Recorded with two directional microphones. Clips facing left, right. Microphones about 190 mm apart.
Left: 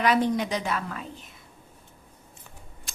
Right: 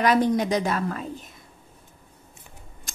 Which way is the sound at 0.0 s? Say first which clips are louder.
Right 3 dB; 40° right (ahead or behind).